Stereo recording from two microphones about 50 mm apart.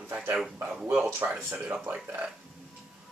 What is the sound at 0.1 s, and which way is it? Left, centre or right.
Speech, right.